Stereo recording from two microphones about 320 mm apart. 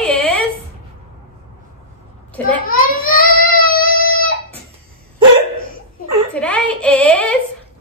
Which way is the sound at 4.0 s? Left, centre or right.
Left.